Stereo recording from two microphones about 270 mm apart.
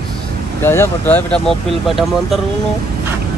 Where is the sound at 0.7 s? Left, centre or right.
Centre.